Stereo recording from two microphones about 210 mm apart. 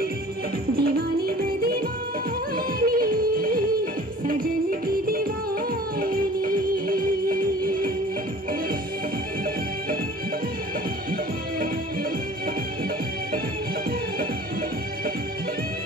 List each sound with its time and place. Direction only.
0.7 s music: 45° right (ahead or behind)